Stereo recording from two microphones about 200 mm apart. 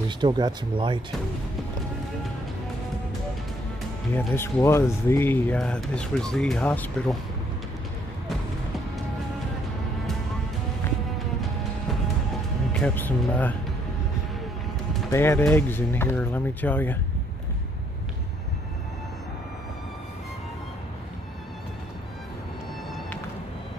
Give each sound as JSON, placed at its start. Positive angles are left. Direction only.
{"t": 0.2, "sound": "speech", "side_deg": -20}
{"t": 4.3, "sound": "speech", "side_deg": 10}
{"t": 12.8, "sound": "speech", "side_deg": 10}
{"t": 15.0, "sound": "speech", "side_deg": 10}